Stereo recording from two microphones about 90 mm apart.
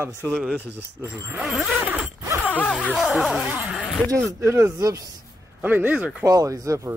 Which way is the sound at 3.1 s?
5° right (ahead or behind).